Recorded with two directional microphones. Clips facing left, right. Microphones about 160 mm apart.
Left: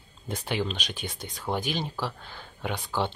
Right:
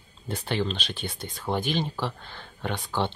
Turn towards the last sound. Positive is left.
turn(degrees=10)  # may be behind; listen again after turning